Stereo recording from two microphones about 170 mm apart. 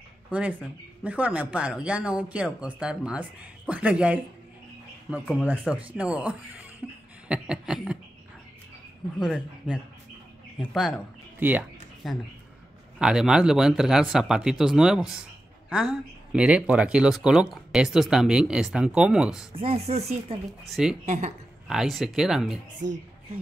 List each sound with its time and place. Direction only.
0.3 s speech: 10° right (ahead or behind)
5.2 s speech: 5° right (ahead or behind)
9.2 s speech: centre (ahead or behind)
19.5 s speech: 35° right (ahead or behind)
20.6 s speech: centre (ahead or behind)
21.0 s a woman's voice: 45° right (ahead or behind)
21.6 s speech: centre (ahead or behind)